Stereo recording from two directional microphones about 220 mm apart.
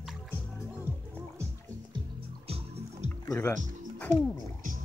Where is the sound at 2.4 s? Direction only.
25° right (ahead or behind).